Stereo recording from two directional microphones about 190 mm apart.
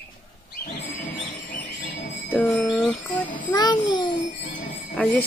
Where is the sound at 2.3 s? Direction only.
10° left (ahead or behind).